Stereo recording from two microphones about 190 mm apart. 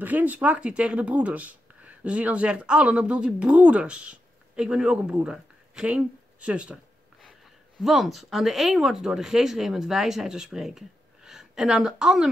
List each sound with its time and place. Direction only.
0.0 s speech: 10° right (ahead or behind)